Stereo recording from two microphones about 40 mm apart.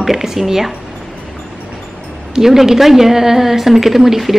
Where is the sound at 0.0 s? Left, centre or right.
Centre.